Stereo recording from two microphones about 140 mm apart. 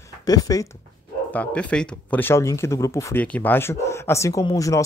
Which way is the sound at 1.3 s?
10° left (ahead or behind).